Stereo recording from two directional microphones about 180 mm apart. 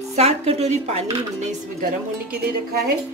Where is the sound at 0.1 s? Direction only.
35° right (ahead or behind).